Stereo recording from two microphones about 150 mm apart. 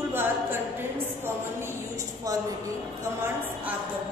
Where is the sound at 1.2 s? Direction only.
20° right (ahead or behind).